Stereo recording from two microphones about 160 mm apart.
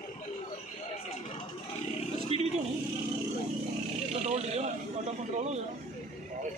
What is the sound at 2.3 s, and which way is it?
Vehicle, 40° right (ahead or behind).